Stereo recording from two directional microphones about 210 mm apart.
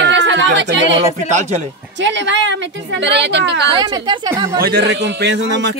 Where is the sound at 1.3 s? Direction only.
35° right (ahead or behind).